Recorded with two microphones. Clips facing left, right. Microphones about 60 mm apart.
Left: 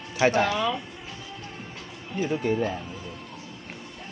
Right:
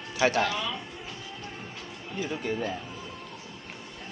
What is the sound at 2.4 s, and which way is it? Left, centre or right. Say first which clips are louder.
Speech: left 5 dB; centre.